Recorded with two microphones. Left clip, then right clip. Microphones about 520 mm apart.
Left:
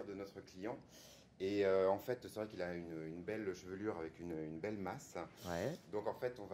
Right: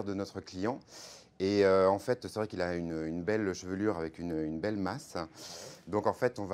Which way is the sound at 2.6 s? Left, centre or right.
Right.